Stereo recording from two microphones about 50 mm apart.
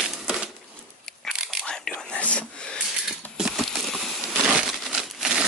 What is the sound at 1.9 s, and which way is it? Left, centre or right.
Whispering, left.